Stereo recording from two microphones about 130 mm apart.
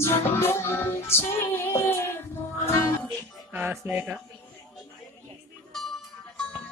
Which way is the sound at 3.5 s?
15° right (ahead or behind).